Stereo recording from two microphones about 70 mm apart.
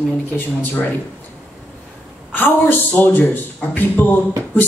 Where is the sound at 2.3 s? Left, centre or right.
Left.